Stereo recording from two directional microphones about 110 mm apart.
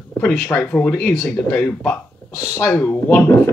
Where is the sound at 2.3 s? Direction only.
25° left (ahead or behind).